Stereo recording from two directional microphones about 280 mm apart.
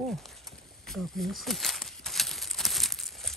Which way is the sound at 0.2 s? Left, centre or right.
Centre.